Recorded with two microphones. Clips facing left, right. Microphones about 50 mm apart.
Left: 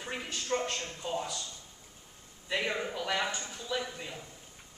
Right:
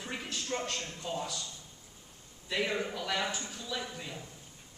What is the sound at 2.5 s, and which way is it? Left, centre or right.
Speech, centre.